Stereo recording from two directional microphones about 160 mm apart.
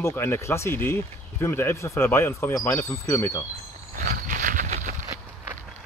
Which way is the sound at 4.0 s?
65° right (ahead or behind).